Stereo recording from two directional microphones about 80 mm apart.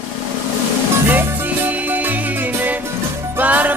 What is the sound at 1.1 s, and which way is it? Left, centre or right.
Music, right.